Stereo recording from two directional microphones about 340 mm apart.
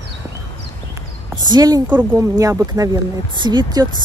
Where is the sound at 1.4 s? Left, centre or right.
Centre.